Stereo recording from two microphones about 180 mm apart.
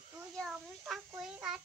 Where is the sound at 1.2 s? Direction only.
Centre (ahead or behind).